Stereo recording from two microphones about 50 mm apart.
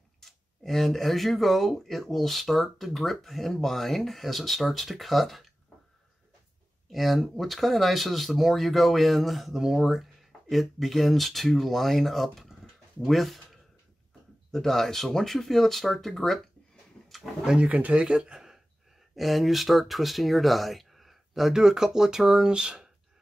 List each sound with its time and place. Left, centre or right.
0.2 s speech: centre
6.9 s speech: centre
17.5 s speech: right
18.0 s speech: centre